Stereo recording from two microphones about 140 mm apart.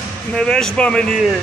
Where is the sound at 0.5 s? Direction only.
5° left (ahead or behind).